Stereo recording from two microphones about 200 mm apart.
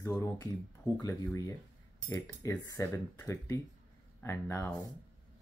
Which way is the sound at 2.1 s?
15° left (ahead or behind).